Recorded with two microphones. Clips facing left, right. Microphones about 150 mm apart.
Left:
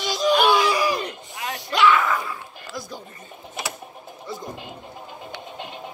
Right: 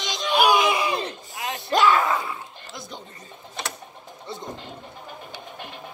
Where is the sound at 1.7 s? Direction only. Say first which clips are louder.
Even; 45° right (ahead or behind).